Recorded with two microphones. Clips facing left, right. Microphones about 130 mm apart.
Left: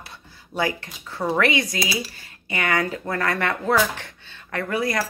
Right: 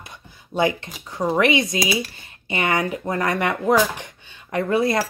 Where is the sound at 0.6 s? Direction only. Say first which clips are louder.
Right 4 dB; 20° right (ahead or behind).